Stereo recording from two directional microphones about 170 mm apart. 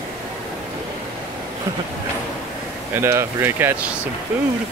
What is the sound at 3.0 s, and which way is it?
Speech, 15° right (ahead or behind).